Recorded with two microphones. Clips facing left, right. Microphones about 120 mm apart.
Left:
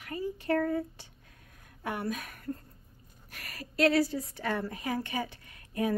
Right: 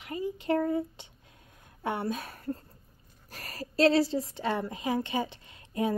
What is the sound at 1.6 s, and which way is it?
A woman's voice, 25° right (ahead or behind).